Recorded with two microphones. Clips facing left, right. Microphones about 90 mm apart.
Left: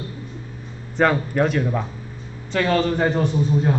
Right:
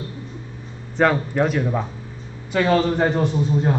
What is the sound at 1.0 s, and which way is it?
A man's voice, centre (ahead or behind).